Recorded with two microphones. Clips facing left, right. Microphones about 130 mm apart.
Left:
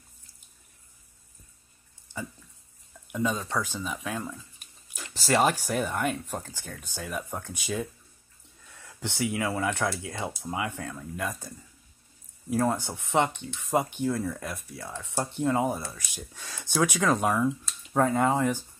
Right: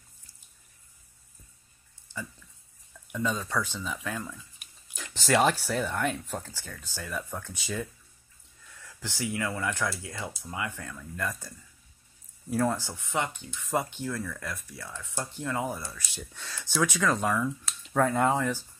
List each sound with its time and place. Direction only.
3.1 s speech: 15° left (ahead or behind)
3.3 s speech: 25° left (ahead or behind)
3.8 s speech: 15° left (ahead or behind)
12.6 s speech: 20° left (ahead or behind)
18.0 s speech: 10° left (ahead or behind)